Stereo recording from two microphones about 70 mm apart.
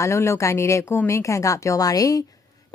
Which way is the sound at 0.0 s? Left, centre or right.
Left.